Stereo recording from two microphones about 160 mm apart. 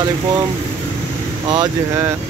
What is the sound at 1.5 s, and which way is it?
Speech, 20° right (ahead or behind).